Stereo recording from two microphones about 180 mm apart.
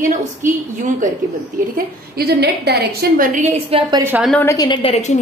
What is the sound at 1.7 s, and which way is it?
A woman's voice, 60° right (ahead or behind).